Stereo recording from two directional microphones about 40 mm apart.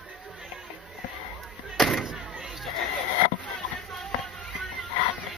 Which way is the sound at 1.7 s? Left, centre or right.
Centre.